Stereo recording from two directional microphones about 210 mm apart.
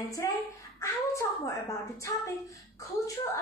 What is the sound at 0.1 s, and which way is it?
A woman's voice, 15° left (ahead or behind).